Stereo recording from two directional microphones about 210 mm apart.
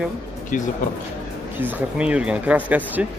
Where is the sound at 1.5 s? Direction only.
10° right (ahead or behind).